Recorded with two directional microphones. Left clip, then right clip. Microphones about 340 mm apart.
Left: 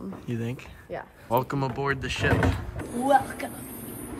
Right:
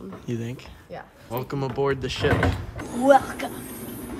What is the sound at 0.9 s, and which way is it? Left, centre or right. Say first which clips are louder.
Speech: left 3 dB; centre.